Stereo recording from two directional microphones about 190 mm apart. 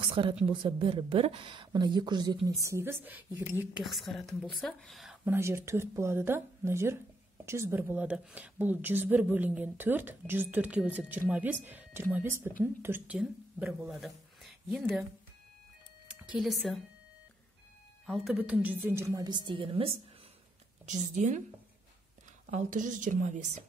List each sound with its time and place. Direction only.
0.0 s a sound: 25° right (ahead or behind)
0.5 s a woman's voice: 30° right (ahead or behind); by 3.8 s 10° right (ahead or behind)
3.8 s a woman's voice: centre (ahead or behind)
5.2 s a woman's voice: 10° right (ahead or behind)
16.2 s a woman's voice: 5° right (ahead or behind)
18.0 s a woman's voice: centre (ahead or behind); by 20.0 s 30° right (ahead or behind)
20.8 s a woman's voice: 40° right (ahead or behind)
22.5 s a woman's voice: 40° right (ahead or behind)